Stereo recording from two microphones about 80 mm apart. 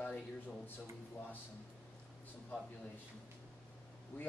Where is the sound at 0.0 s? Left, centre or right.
Centre.